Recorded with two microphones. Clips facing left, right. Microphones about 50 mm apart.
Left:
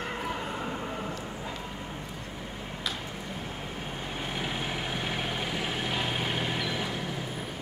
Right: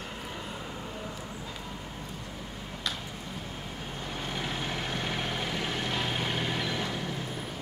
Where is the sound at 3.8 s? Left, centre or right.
Centre.